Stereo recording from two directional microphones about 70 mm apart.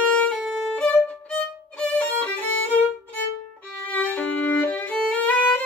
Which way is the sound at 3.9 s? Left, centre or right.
Left.